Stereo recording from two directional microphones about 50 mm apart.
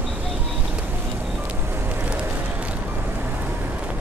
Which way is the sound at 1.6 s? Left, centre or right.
Right.